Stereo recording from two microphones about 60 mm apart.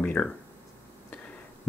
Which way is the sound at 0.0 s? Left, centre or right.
Left.